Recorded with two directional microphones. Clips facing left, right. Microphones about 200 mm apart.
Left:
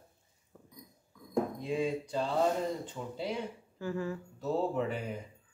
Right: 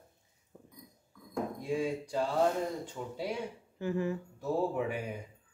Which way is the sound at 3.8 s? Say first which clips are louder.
Right 3 dB; 20° right (ahead or behind).